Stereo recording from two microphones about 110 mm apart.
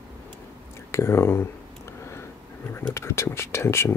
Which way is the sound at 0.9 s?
25° left (ahead or behind).